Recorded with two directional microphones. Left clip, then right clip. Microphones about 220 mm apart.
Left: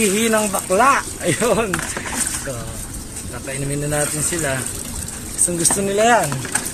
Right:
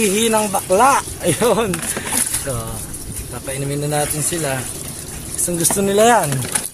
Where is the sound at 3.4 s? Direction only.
15° right (ahead or behind).